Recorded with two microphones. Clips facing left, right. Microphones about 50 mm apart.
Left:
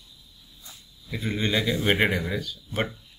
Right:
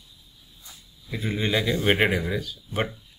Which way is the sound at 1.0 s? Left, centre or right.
Centre.